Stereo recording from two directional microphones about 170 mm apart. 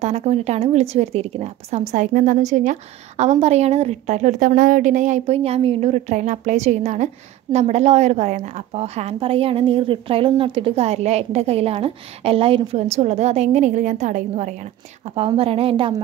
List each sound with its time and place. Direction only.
0.0 s a woman's voice: 40° right (ahead or behind)